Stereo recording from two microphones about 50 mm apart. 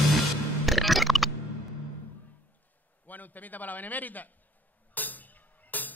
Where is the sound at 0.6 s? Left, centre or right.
Centre.